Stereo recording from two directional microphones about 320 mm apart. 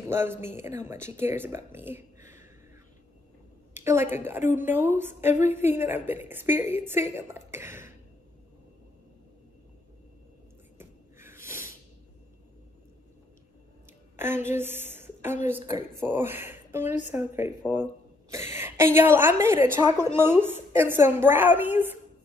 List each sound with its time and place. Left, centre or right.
0.0 s a woman's voice: centre
3.7 s a woman's voice: centre
10.8 s snort: centre
14.1 s a woman's voice: centre
18.3 s a sound: centre
18.9 s a woman's voice: centre